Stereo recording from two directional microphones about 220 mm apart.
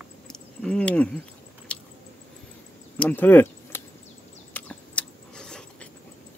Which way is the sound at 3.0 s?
10° left (ahead or behind).